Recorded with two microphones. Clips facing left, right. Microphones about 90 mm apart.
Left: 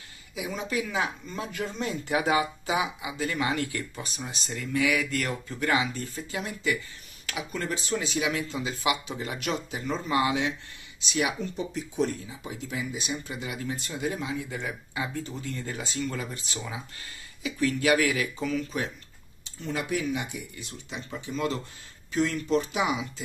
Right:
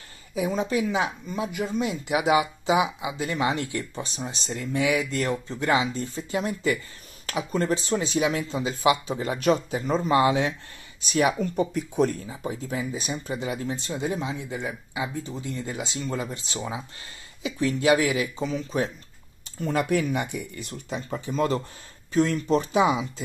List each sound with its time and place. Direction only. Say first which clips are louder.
0.3 s speech: right 7 dB; 35° right (ahead or behind)
0.8 s speech: right 4 dB; 20° right (ahead or behind)
11.0 s speech: right 6 dB; 45° right (ahead or behind); by 18.9 s 30° right (ahead or behind)
19.6 s speech: right 6 dB; 45° right (ahead or behind); by 23.2 s 30° right (ahead or behind)